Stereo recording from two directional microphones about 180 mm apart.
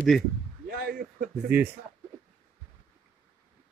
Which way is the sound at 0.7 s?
55° right (ahead or behind).